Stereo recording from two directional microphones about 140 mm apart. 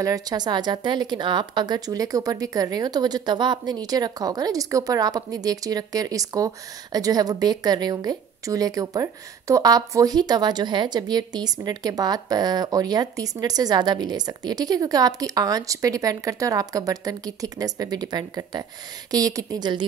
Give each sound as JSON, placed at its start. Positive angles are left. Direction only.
{"t": 0.0, "sound": "speech", "side_deg": -25}